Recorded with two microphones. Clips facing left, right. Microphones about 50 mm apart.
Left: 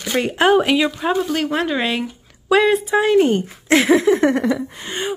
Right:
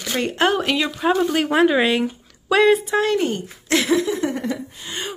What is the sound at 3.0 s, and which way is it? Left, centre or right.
Speech, centre.